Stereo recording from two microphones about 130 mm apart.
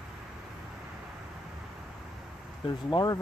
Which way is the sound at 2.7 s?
35° left (ahead or behind).